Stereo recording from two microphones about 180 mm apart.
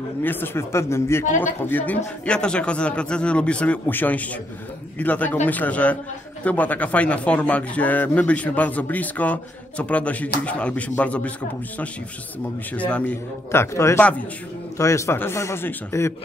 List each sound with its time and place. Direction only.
0.2 s speech: 10° left (ahead or behind)
12.7 s speech: 5° left (ahead or behind)